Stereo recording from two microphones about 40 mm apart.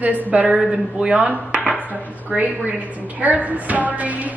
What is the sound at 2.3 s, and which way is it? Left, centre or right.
A woman's voice, right.